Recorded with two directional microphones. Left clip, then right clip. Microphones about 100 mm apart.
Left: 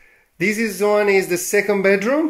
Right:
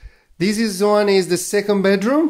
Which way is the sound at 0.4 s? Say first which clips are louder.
Even; 45° right (ahead or behind).